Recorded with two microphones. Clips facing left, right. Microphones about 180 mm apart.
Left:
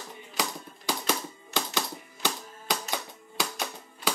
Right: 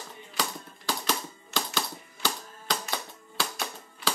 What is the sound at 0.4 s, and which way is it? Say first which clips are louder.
Typewriter: left 1 dB; 15° left (ahead or behind).